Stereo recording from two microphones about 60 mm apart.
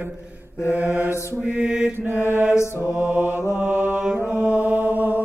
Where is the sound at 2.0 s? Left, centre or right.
Right.